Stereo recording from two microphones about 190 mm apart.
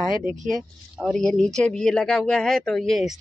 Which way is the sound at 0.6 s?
Centre (ahead or behind).